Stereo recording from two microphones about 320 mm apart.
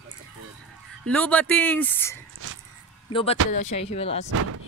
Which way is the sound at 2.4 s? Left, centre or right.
Right.